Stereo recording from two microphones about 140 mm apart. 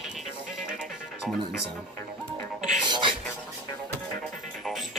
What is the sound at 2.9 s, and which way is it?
Music, 35° right (ahead or behind).